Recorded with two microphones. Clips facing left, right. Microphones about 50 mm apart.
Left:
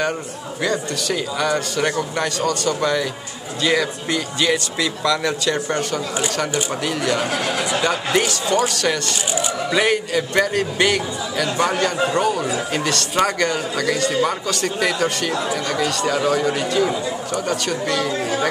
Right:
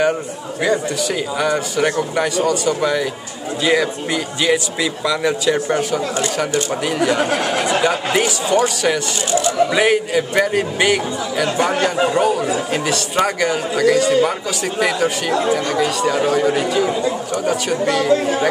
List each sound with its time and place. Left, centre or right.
1.4 s speech: centre
7.0 s speech: centre
7.2 s speech: right
7.8 s speech: centre